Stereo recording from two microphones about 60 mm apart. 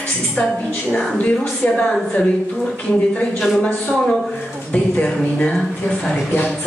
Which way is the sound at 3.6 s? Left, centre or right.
Centre.